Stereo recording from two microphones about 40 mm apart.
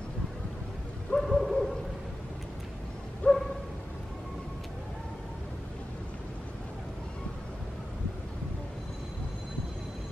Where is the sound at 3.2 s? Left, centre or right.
Left.